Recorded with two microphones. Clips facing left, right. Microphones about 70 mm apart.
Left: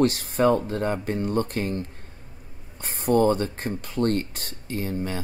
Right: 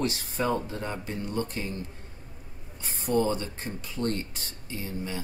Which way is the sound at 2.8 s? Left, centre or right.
Left.